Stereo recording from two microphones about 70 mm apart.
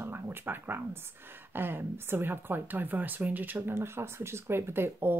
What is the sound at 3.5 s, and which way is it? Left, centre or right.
Speech, right.